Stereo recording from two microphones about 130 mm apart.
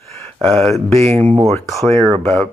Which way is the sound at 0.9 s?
50° right (ahead or behind).